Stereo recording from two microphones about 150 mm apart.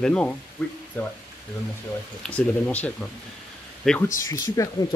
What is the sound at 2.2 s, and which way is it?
Speech, 10° left (ahead or behind).